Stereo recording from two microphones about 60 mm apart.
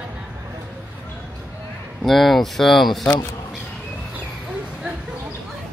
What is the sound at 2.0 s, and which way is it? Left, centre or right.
Speech, centre.